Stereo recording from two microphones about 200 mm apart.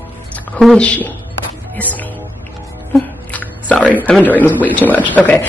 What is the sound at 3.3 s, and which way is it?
Speech, 5° left (ahead or behind).